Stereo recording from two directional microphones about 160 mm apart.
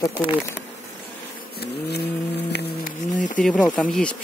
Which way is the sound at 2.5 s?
90° left.